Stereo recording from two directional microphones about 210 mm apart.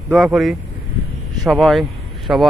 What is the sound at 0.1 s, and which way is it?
A man's voice, centre (ahead or behind).